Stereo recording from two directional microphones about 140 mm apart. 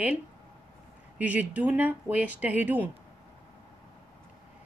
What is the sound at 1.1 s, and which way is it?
Speech, 10° right (ahead or behind).